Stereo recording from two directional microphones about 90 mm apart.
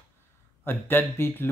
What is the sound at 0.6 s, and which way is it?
Speech, 25° left (ahead or behind).